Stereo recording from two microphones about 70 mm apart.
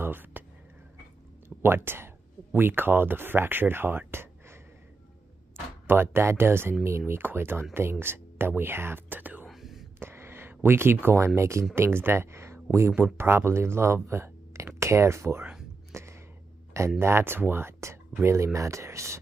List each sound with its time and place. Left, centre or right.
0.0 s a sound: right
1.6 s speech: right
5.9 s speech: right
9.5 s whispering: centre
9.9 s speech: right
15.9 s a sound: right
17.0 s speech: right